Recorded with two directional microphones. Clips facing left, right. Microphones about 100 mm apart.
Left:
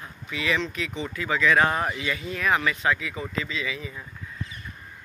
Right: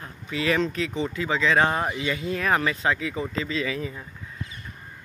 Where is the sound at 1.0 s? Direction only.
25° right (ahead or behind).